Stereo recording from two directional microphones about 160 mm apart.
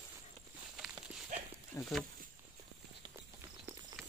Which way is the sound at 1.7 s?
25° left (ahead or behind).